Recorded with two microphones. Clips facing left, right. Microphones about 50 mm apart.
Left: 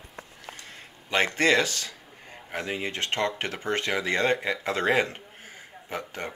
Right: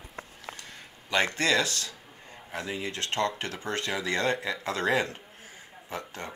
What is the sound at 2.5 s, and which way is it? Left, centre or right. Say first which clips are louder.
Speech: left 3 dB; left.